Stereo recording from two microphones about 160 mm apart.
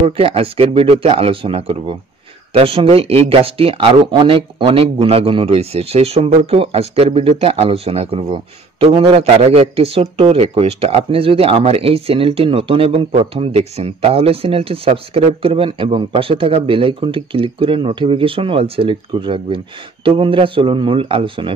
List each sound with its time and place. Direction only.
0.0 s speech: 35° right (ahead or behind)